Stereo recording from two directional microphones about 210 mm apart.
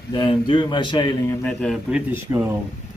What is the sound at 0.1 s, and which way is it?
Speech, 25° left (ahead or behind).